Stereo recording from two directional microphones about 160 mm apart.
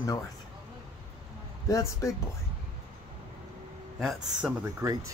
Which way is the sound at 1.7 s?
20° left (ahead or behind).